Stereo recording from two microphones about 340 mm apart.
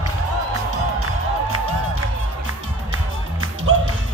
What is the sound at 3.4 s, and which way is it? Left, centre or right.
Music, right.